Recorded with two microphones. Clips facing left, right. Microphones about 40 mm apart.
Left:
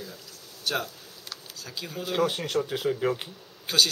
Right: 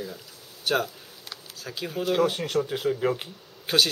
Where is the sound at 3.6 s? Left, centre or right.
Centre.